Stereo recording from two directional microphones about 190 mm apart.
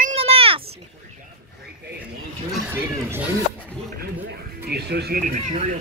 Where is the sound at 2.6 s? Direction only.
10° right (ahead or behind).